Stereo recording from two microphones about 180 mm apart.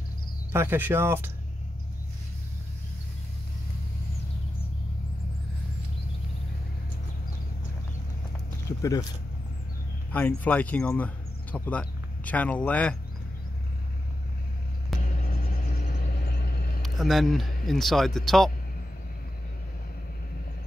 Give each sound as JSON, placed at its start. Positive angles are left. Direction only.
{"t": 0.5, "sound": "speech", "side_deg": -10}
{"t": 8.6, "sound": "a sound", "side_deg": 20}
{"t": 10.1, "sound": "speech", "side_deg": 10}
{"t": 14.9, "sound": "vehicle", "side_deg": 0}
{"t": 15.2, "sound": "vehicle", "side_deg": 55}
{"t": 16.3, "sound": "vehicle", "side_deg": 60}
{"t": 16.8, "sound": "speech", "side_deg": 0}